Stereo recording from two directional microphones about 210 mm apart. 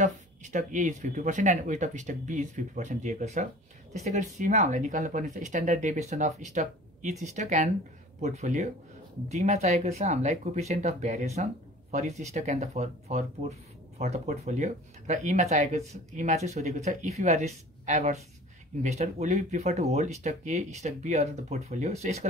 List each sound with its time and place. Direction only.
0.0 s speech: 35° right (ahead or behind)